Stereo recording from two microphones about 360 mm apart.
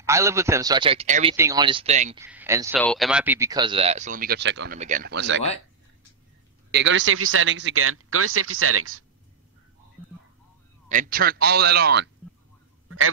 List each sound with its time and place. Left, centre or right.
0.0 s a man's voice: centre
2.1 s a man's voice: centre; by 5.4 s right
6.7 s a man's voice: right
10.9 s speech: right
12.8 s a sound: right